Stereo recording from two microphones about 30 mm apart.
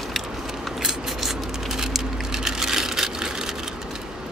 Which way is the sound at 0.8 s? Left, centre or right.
Centre.